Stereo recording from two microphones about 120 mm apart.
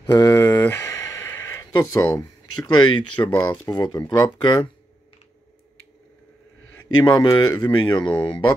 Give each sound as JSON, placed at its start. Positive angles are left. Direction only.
{"t": 0.0, "sound": "a sound", "side_deg": 35}
{"t": 2.8, "sound": "speech", "side_deg": 40}
{"t": 6.8, "sound": "speech", "side_deg": 35}